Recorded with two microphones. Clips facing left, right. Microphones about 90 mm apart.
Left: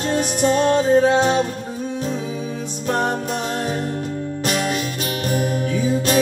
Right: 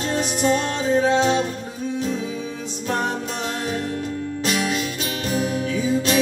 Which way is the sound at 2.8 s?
45° left (ahead or behind).